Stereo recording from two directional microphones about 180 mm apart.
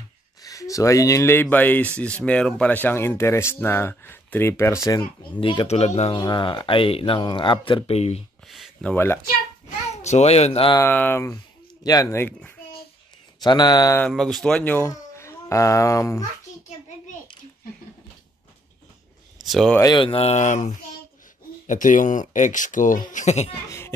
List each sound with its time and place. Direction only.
0.4 s speech: 20° left (ahead or behind); by 8.2 s 35° left (ahead or behind)
8.5 s speech: centre (ahead or behind)
8.9 s speech: 15° left (ahead or behind)
10.0 s speech: 40° left (ahead or behind)
10.8 s speech: 10° left (ahead or behind)
13.4 s speech: 25° left (ahead or behind)
14.0 s speech: centre (ahead or behind)
19.4 s speech: centre (ahead or behind)
19.8 s speech: 25° left (ahead or behind)